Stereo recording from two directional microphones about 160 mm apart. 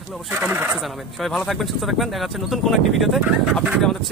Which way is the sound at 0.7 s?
Centre (ahead or behind).